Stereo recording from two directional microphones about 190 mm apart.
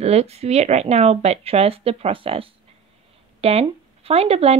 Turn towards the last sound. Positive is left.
turn(degrees=-30)  # may be behind; listen again after turning